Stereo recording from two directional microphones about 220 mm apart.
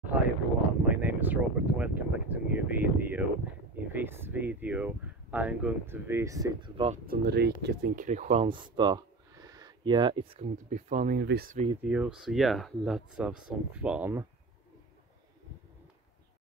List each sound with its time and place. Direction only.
0.1 s a sound: 5° right (ahead or behind)
0.8 s speech: 5° right (ahead or behind)
6.9 s speech: 45° right (ahead or behind); by 10.5 s 25° right (ahead or behind)
10.7 s speech: 35° right (ahead or behind)
11.1 s speech: 45° right (ahead or behind)
11.8 s speech: 5° right (ahead or behind)